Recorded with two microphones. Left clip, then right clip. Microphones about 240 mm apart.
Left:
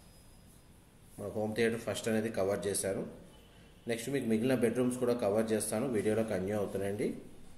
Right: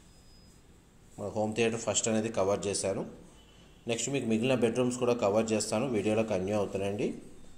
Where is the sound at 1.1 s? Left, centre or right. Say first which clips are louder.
Right 3 dB; centre.